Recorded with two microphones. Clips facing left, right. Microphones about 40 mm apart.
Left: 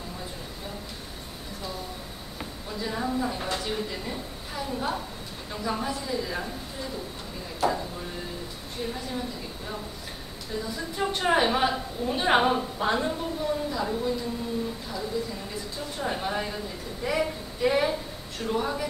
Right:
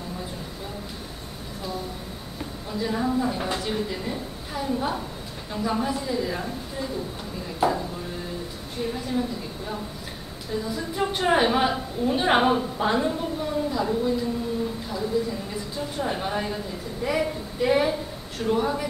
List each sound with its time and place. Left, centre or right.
2.7 s a woman's voice: centre
7.6 s a woman's voice: centre
8.8 s a woman's voice: centre
10.6 s a woman's voice: centre
15.2 s a woman's voice: centre